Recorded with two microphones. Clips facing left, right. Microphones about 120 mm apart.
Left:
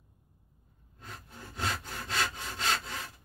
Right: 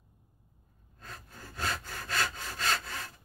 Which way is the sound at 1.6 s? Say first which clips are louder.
Even; 20° left (ahead or behind).